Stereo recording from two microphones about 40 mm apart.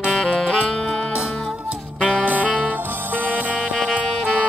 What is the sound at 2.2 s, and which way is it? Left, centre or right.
Music, right.